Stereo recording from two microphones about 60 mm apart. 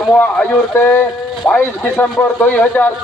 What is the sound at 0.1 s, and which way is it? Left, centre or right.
Speech, left.